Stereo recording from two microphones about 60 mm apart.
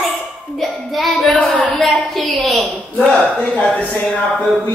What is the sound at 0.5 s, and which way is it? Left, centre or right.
Music, centre.